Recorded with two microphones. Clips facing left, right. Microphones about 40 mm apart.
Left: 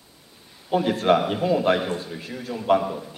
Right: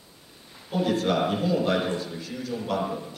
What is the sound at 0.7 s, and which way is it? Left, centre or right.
A man's voice, left.